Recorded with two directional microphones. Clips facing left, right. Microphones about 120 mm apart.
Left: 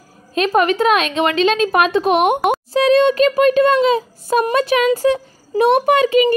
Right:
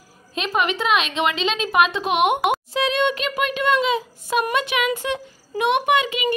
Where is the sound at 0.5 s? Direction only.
40° left (ahead or behind).